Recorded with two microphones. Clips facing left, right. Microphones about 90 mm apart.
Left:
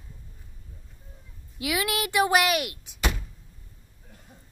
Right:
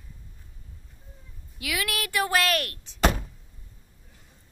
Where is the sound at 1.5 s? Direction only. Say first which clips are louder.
Left 3 dB; 20° left (ahead or behind).